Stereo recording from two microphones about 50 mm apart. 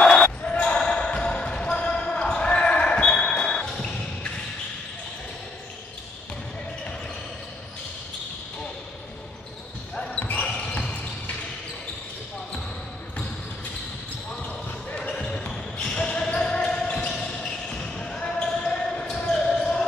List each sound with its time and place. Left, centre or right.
0.2 s basketball bounce: left
10.1 s basketball bounce: left
10.4 s basketball bounce: centre
14.9 s basketball bounce: centre